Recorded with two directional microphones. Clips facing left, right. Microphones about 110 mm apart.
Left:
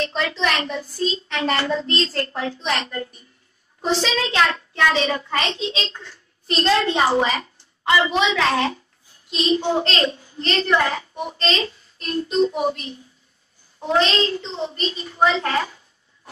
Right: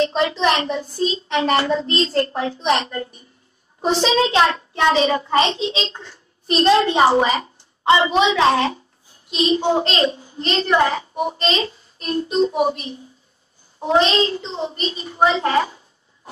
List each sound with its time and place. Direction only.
0.0 s a child's voice: 25° right (ahead or behind)